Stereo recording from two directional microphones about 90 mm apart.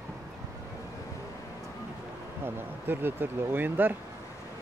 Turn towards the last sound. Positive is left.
turn(degrees=-20)  # may be behind; listen again after turning